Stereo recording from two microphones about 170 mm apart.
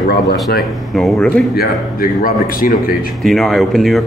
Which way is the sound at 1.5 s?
60° left (ahead or behind).